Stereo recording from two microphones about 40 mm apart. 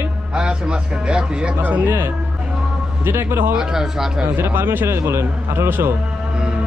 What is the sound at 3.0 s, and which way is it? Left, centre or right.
Speech, right.